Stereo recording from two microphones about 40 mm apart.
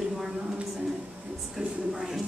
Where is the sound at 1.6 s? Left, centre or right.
Right.